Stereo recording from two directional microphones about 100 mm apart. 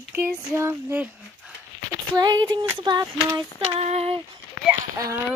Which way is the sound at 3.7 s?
90° right.